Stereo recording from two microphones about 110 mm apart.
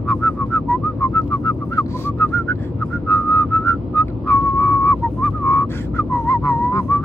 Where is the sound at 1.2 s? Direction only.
35° left (ahead or behind).